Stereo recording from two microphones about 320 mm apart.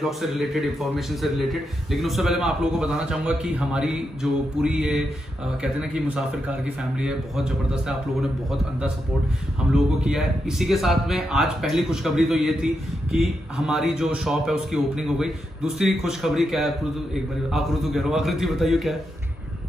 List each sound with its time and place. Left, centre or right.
0.0 s speech: centre
10.0 s speech: centre